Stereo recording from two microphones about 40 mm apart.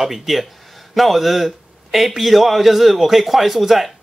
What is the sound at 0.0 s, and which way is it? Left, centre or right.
Speech, centre.